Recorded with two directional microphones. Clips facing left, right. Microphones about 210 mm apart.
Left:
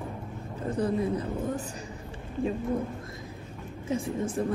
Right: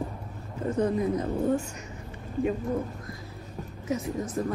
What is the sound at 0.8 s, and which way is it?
Speech, 35° left (ahead or behind).